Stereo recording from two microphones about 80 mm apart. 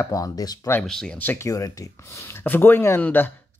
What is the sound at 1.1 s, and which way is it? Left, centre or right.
Speech, left.